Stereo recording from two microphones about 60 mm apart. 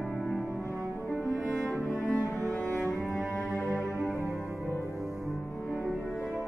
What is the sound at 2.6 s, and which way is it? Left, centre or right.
Cello, left.